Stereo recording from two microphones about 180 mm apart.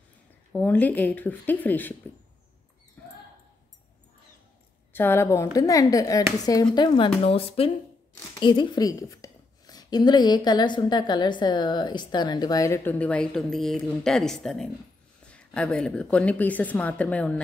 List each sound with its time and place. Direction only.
0.5 s a woman's voice: 10° left (ahead or behind)
4.9 s a woman's voice: 10° left (ahead or behind)